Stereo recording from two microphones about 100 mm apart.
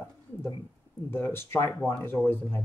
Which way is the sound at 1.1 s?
25° left (ahead or behind).